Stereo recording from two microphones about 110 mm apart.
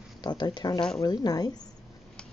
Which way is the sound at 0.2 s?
40° left (ahead or behind).